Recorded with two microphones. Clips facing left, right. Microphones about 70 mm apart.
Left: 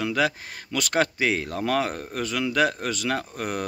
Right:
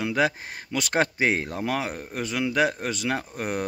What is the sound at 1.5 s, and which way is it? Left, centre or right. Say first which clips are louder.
Speech: left 3 dB; centre.